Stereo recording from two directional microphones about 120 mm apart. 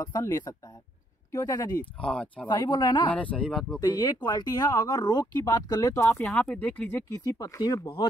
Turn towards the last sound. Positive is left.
turn(degrees=30)  # may be behind; listen again after turning